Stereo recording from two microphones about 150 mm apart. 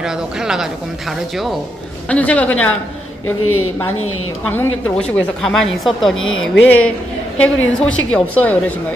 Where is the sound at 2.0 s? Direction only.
10° left (ahead or behind).